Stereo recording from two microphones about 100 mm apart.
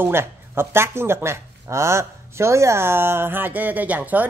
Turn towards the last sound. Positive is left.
turn(degrees=-15)  # may be behind; listen again after turning